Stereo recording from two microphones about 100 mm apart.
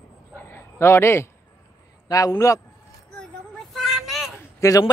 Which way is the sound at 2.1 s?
35° left (ahead or behind).